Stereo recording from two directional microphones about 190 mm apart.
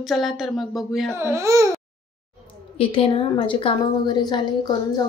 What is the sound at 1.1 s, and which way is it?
Speech, 15° right (ahead or behind).